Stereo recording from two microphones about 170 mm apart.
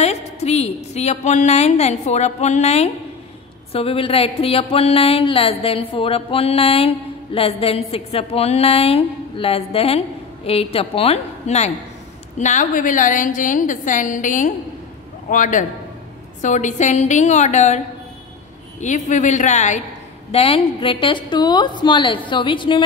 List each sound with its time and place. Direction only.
0.0 s a woman's voice: 40° left (ahead or behind)
20.2 s a woman's voice: 35° left (ahead or behind)